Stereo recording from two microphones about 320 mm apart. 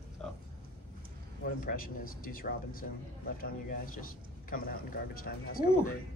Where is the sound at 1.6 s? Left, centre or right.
Left.